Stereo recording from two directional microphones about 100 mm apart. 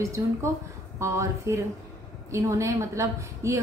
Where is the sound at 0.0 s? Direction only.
30° right (ahead or behind).